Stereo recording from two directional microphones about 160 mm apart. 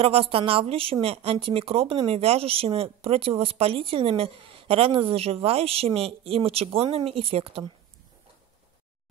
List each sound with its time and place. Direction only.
0.0 s a woman's voice: 35° right (ahead or behind)